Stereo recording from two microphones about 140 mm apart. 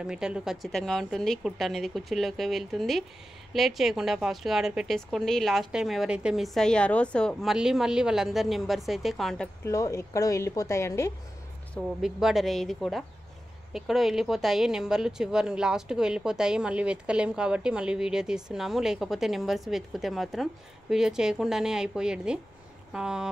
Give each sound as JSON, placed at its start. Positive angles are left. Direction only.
{"t": 0.0, "sound": "speech", "side_deg": -5}
{"t": 7.5, "sound": "speech", "side_deg": -5}
{"t": 9.7, "sound": "a woman's voice", "side_deg": 20}
{"t": 12.0, "sound": "speech", "side_deg": -5}